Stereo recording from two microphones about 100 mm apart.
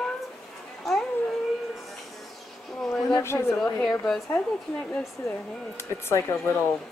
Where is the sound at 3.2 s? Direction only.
25° left (ahead or behind).